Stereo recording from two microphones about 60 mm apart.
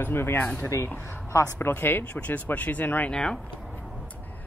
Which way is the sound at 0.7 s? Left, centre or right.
Left.